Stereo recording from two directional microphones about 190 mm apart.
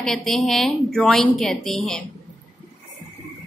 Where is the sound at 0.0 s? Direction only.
Centre (ahead or behind).